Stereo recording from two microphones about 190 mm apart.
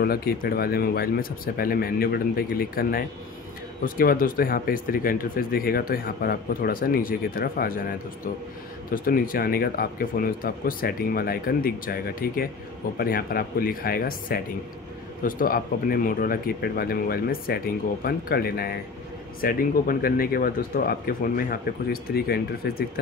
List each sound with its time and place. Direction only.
0.0 s speech: 55° left (ahead or behind)
8.9 s speech: 50° left (ahead or behind)